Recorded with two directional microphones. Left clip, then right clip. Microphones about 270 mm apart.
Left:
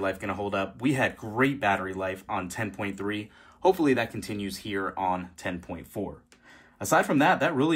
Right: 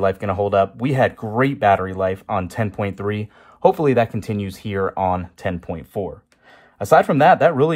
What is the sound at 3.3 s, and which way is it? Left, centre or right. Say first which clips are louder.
Speech: right 7 dB; right.